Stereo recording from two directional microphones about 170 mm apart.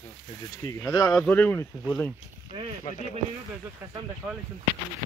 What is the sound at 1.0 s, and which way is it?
Speech, 5° left (ahead or behind).